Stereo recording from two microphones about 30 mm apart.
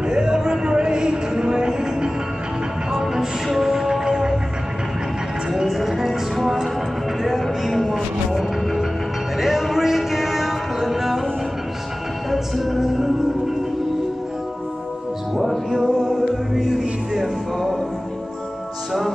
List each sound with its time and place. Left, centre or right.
0.0 s a sound: right
2.9 s music: centre
5.5 s music: centre
9.4 s a sound: centre
12.3 s music: centre
15.8 s music: centre